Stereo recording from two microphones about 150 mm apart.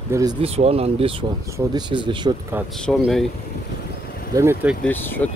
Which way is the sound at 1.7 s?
30° right (ahead or behind).